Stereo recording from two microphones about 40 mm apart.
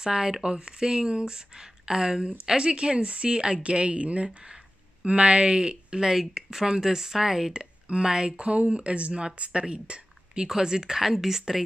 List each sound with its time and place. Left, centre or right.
0.0 s speech: centre
6.0 s speech: centre
7.5 s speech: centre
8.4 s speech: right; by 11.6 s centre